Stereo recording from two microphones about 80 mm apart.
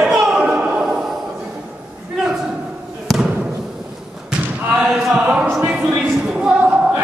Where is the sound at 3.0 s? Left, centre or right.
Centre.